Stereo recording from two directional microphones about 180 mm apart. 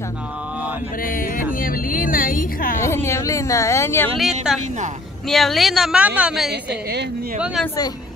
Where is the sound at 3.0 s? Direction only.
15° left (ahead or behind).